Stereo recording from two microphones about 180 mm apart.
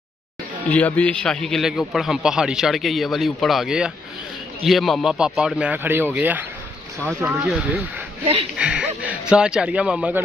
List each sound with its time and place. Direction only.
0.7 s a man's voice: 5° left (ahead or behind)